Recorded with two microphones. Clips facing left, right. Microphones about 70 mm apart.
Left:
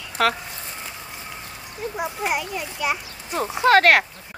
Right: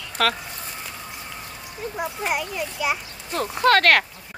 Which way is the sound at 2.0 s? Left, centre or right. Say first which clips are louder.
Left 1 dB; centre.